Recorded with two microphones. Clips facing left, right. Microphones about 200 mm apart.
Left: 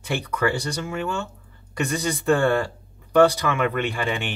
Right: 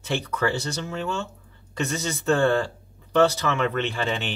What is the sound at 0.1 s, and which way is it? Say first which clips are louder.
Speech: left 1 dB; 55° left (ahead or behind).